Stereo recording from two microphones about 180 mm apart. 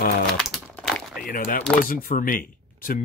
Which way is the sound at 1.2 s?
50° left (ahead or behind).